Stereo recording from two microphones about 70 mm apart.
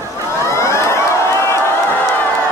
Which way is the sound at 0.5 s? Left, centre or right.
Left.